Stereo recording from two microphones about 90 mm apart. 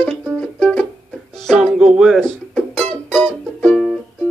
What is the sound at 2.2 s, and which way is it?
Music, 10° left (ahead or behind).